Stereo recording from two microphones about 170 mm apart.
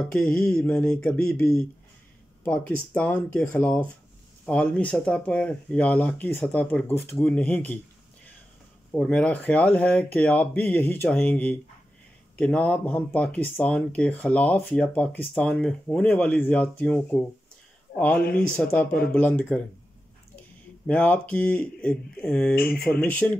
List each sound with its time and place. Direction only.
0.0 s mantra: 5° left (ahead or behind)
2.4 s speech: 10° left (ahead or behind)
8.9 s speech: 5° left (ahead or behind)
22.6 s speech: 60° left (ahead or behind)
22.8 s speech: 10° left (ahead or behind)